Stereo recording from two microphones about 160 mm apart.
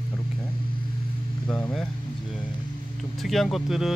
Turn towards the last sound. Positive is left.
turn(degrees=0)  # may be behind; listen again after turning